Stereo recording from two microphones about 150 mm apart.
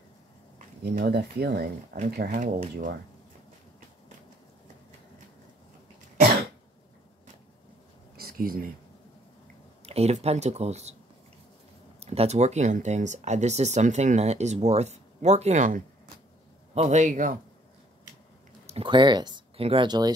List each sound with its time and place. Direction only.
0.9 s speech: 90° right
2.4 s speech: 55° right (ahead or behind)
8.2 s a sound: 85° right
9.8 s speech: 45° right (ahead or behind)
12.0 s speech: 45° right (ahead or behind)
18.7 s speech: 35° right (ahead or behind)